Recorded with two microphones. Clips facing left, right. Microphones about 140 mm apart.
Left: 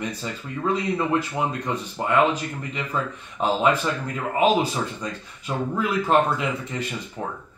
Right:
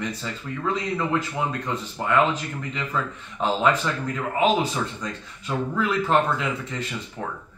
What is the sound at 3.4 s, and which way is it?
Speech, 10° left (ahead or behind).